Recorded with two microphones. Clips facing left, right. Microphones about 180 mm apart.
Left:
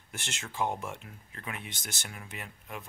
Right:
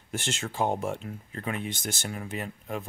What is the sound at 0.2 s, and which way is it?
Speech, 35° right (ahead or behind).